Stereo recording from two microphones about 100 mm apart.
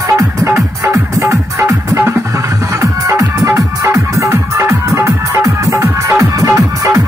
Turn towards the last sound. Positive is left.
turn(degrees=-35)  # may be behind; listen again after turning